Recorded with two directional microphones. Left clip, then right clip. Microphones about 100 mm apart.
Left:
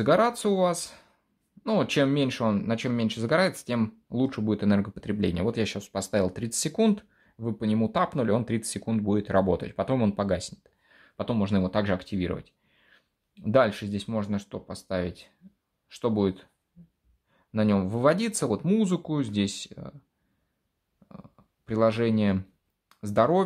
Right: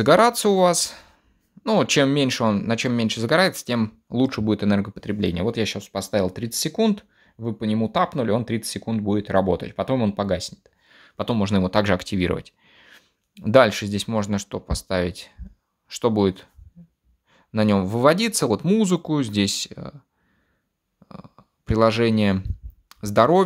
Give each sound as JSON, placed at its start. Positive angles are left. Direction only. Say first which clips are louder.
{"t": 0.0, "sound": "speech", "louder": "right 7 dB", "side_deg": -50}
{"t": 21.1, "sound": "speech", "louder": "right 7 dB", "side_deg": -40}